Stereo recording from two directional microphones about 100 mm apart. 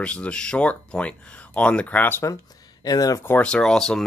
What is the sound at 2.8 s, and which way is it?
Speech, 40° left (ahead or behind).